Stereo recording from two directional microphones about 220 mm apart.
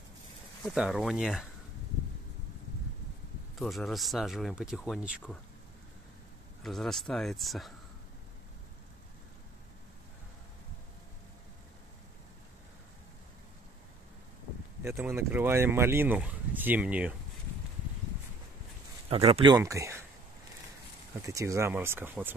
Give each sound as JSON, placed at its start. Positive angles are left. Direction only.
{"t": 0.7, "sound": "speech", "side_deg": 0}
{"t": 3.5, "sound": "speech", "side_deg": 0}
{"t": 6.6, "sound": "speech", "side_deg": 0}
{"t": 14.8, "sound": "speech", "side_deg": -10}
{"t": 19.0, "sound": "speech", "side_deg": -25}
{"t": 21.2, "sound": "speech", "side_deg": -15}